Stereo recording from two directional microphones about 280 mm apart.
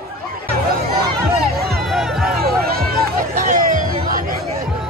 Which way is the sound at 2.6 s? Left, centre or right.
Right.